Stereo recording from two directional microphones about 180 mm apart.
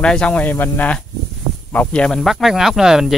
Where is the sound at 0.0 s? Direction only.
5° left (ahead or behind).